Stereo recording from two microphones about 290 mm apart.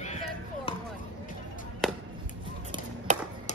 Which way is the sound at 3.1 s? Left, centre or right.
Right.